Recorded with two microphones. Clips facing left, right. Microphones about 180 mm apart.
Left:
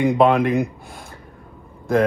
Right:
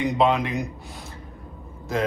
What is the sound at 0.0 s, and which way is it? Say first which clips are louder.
Speech: left 5 dB; 55° left (ahead or behind).